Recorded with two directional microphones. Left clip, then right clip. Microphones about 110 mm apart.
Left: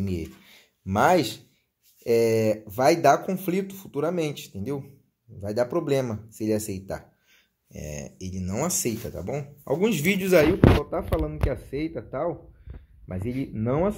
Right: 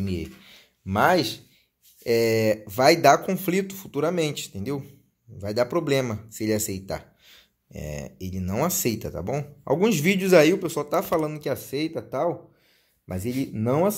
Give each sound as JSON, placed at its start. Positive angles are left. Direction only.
{"t": 0.0, "sound": "speech", "side_deg": 25}
{"t": 2.0, "sound": "speech", "side_deg": 10}
{"t": 10.4, "sound": "speech", "side_deg": -15}